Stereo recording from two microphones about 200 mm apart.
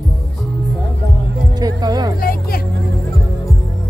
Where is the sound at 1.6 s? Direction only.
20° right (ahead or behind).